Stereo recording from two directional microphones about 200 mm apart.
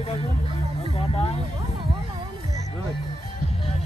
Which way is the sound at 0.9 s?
25° left (ahead or behind).